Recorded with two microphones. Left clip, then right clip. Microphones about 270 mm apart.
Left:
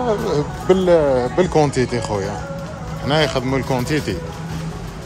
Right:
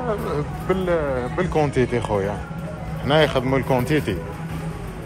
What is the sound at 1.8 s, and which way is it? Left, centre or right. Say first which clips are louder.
Speech: even; centre.